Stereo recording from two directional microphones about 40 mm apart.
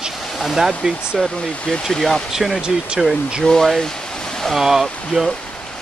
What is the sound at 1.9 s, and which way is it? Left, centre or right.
Speech, centre.